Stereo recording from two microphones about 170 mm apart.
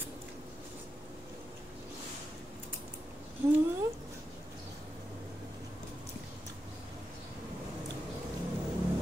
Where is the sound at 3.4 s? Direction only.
15° right (ahead or behind).